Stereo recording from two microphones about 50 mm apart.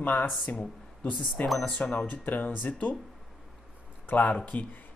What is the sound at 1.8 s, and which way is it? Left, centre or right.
Speech, left.